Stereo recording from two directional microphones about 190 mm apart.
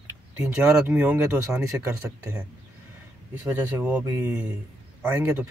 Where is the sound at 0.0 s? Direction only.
10° right (ahead or behind).